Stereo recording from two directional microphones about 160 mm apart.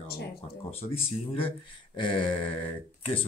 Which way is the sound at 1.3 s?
35° left (ahead or behind).